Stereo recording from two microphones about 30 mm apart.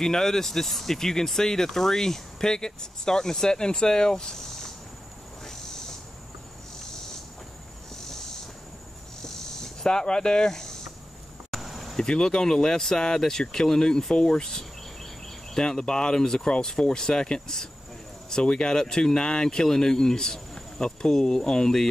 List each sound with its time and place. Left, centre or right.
0.0 s speech: centre
4.4 s a sound: centre
7.9 s a sound: centre
9.2 s snake: left
10.5 s speech: centre
11.5 s cricket: centre
12.0 s speech: left
15.8 s speech: left